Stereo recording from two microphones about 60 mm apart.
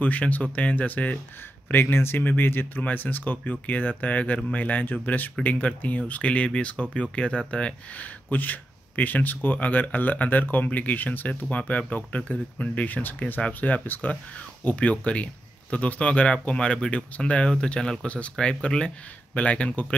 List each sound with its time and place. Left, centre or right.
0.0 s speech: left
1.7 s speech: left; by 8.1 s centre
8.3 s speech: left